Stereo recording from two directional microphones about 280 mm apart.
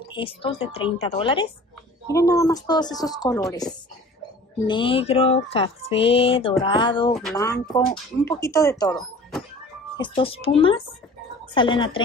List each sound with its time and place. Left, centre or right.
0.1 s speech: centre